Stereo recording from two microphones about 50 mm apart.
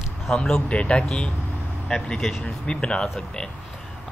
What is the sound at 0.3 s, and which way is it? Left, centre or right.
Speech, centre.